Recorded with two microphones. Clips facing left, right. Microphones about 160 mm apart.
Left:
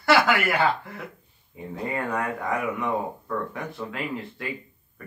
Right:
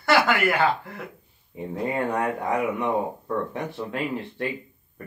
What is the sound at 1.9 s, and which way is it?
Speech, 25° right (ahead or behind).